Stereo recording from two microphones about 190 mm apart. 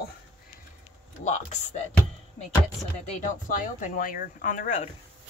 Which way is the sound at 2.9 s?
40° left (ahead or behind).